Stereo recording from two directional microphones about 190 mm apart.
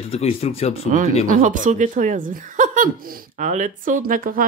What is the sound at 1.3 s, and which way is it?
Speech, 45° right (ahead or behind).